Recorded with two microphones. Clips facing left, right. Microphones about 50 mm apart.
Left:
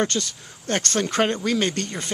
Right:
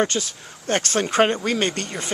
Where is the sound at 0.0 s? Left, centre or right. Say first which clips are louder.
Right 2 dB; centre.